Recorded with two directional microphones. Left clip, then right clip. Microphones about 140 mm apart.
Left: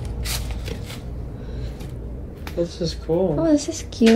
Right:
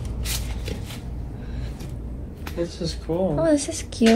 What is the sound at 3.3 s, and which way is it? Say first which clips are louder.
Speech: left 1 dB; 10° left (ahead or behind).